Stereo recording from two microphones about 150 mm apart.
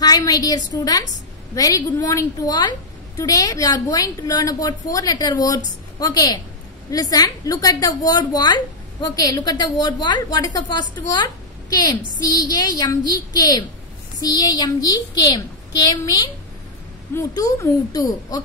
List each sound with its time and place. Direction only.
0.0 s a woman's voice: 25° left (ahead or behind)
17.3 s a woman's voice: 20° left (ahead or behind)